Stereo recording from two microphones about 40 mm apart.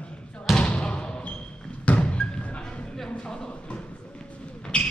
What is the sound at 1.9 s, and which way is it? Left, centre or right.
Music, left.